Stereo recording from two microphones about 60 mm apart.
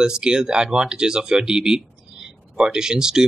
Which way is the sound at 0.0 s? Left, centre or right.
Centre.